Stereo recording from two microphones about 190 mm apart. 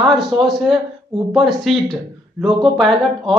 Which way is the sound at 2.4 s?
25° right (ahead or behind).